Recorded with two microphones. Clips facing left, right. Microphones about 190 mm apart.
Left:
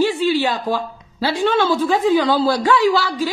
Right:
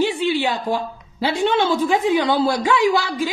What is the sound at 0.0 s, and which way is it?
A woman's voice, 15° right (ahead or behind).